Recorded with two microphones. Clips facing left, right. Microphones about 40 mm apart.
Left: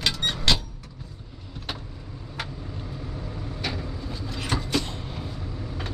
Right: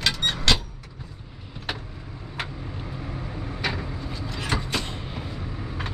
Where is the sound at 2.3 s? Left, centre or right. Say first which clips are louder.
Right 2 dB; right.